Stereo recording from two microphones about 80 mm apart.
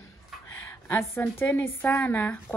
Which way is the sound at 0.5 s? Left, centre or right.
Left.